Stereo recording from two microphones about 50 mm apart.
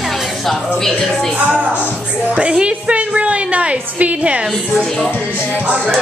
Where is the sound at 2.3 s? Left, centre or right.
Centre.